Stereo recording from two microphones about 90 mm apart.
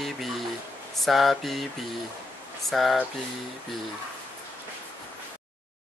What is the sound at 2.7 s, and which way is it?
Speech, centre (ahead or behind).